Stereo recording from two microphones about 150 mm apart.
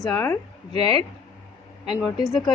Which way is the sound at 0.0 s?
15° left (ahead or behind).